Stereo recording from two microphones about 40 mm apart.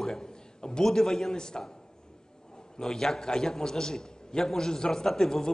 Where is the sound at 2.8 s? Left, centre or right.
Centre.